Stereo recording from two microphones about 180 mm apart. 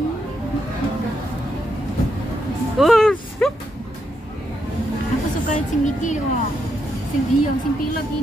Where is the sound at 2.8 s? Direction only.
Centre (ahead or behind).